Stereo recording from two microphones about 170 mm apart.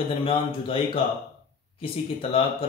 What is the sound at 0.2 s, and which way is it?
Speech, 30° left (ahead or behind).